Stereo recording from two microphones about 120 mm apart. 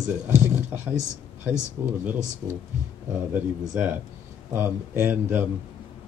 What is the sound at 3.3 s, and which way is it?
Speech, 15° right (ahead or behind).